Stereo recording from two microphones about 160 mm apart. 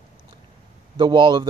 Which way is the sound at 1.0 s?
30° right (ahead or behind).